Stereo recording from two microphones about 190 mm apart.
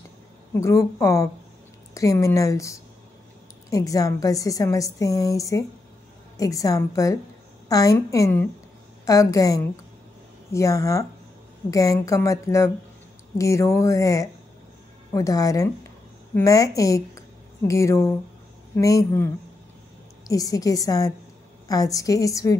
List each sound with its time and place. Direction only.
0.6 s a woman's voice: 15° left (ahead or behind)